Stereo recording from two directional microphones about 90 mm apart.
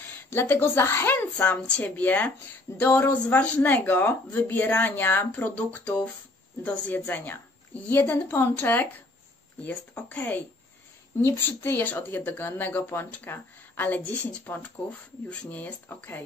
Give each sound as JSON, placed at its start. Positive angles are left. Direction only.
{"t": 0.0, "sound": "speech", "side_deg": 25}